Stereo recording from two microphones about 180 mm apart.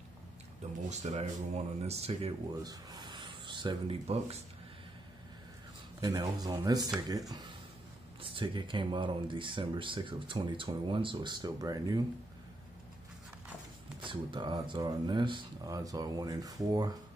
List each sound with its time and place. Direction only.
0.8 s speech: 40° right (ahead or behind)
2.6 s speech: 20° right (ahead or behind)
5.9 s speech: 20° right (ahead or behind)
14.0 s speech: 25° right (ahead or behind)